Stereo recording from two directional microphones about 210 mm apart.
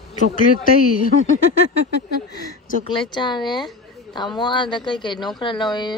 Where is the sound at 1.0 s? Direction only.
40° left (ahead or behind).